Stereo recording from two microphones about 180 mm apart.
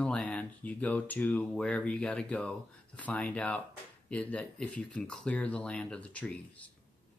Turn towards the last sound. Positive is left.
turn(degrees=10)  # may be behind; listen again after turning